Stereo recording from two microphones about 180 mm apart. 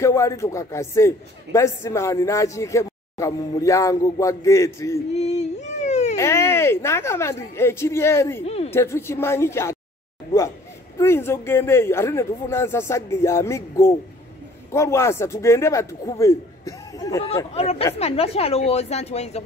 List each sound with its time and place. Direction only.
0.0 s a man's voice: 15° left (ahead or behind)
5.1 s a sound: 35° left (ahead or behind)
6.1 s a man's voice: 15° left (ahead or behind)
11.0 s a man's voice: 15° left (ahead or behind)
17.6 s a woman's voice: 35° left (ahead or behind)